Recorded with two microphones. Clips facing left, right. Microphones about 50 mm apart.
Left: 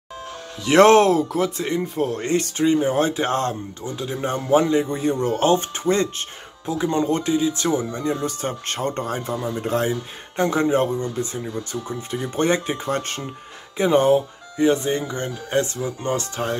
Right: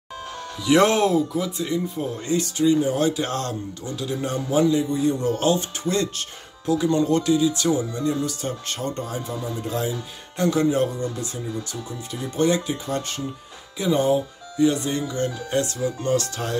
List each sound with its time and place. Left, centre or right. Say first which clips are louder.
0.7 s speech: left 5 dB; left
1.6 s speech: left 3 dB; left
2.5 s speech: even; left
10.3 s speech: left 1 dB; left